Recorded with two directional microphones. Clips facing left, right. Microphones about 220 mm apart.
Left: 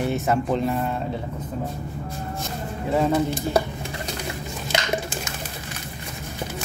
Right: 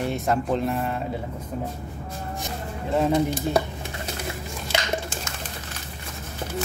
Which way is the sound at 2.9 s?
5° left (ahead or behind).